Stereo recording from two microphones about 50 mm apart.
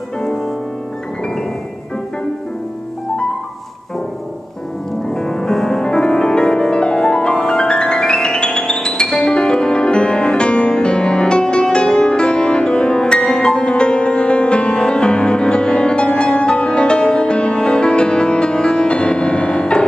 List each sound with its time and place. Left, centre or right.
0.2 s music: centre
5.1 s music: centre